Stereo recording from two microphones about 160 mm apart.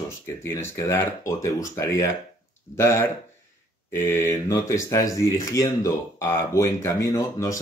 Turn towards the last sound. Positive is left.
turn(degrees=20)  # may be behind; listen again after turning